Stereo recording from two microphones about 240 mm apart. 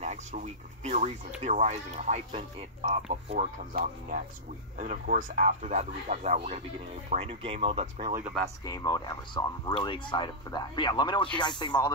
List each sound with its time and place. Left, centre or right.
0.0 s speech: right
8.6 s speech: centre